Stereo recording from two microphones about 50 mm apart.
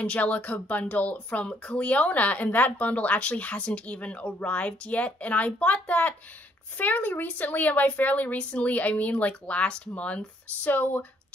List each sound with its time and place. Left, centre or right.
0.0 s a woman's voice: left